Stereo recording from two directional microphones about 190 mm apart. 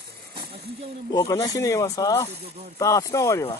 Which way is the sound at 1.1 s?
20° left (ahead or behind).